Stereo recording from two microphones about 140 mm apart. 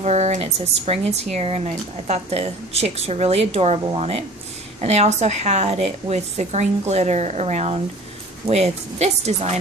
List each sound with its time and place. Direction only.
0.0 s speech: 50° right (ahead or behind)